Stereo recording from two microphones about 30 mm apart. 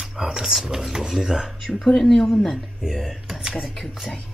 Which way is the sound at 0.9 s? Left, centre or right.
Centre.